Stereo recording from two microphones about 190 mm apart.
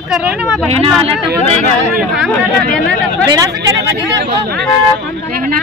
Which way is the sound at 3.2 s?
20° right (ahead or behind).